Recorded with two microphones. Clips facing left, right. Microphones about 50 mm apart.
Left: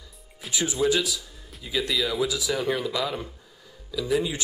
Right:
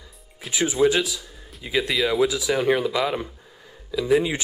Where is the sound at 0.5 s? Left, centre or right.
Right.